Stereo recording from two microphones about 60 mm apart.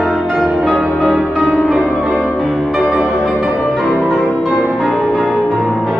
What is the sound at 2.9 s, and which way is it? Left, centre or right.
Music, centre.